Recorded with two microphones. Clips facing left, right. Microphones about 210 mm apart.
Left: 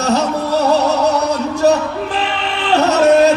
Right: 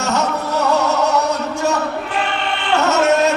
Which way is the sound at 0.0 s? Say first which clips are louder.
Left 4 dB; 35° left (ahead or behind).